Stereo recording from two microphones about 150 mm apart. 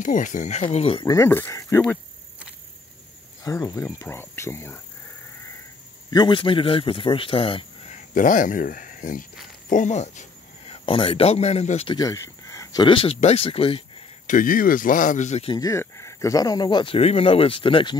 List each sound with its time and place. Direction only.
0.0 s speech: 60° left (ahead or behind); by 1.0 s 40° left (ahead or behind)
1.0 s speech: 20° left (ahead or behind)
3.4 s speech: 20° left (ahead or behind)
6.0 s speech: 30° left (ahead or behind)
7.9 s speech: 60° left (ahead or behind)
10.7 s speech: 40° left (ahead or behind)
11.9 s a sound: 25° left (ahead or behind)
12.8 s speech: 40° left (ahead or behind)
14.2 s speech: 60° left (ahead or behind)
15.5 s speech: 20° left (ahead or behind)